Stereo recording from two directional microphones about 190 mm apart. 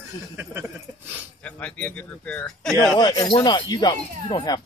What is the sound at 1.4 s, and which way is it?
Speech, 5° left (ahead or behind).